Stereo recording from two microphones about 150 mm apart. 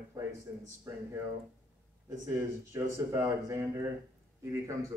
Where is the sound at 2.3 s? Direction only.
15° right (ahead or behind).